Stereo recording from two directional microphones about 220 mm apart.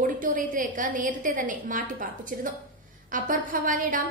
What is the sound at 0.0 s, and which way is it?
A woman's voice, 40° right (ahead or behind).